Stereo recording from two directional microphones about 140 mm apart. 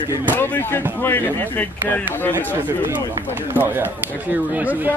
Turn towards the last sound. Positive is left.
turn(degrees=-10)  # may be behind; listen again after turning